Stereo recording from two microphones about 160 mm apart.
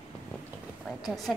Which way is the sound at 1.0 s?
Centre (ahead or behind).